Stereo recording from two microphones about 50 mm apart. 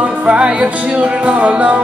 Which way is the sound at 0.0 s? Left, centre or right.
Right.